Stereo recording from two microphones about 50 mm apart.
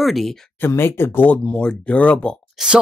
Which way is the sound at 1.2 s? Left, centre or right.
Left.